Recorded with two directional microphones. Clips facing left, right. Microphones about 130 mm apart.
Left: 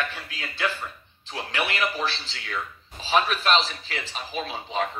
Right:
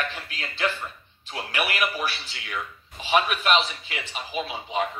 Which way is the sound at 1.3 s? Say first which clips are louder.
Even; 15° right (ahead or behind).